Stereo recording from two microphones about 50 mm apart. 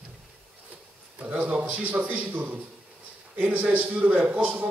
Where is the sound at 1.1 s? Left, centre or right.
Right.